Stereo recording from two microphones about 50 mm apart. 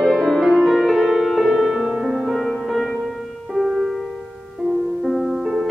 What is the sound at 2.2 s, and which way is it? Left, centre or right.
Music, centre.